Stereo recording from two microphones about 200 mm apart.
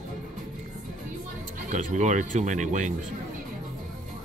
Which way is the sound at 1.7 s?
40° right (ahead or behind).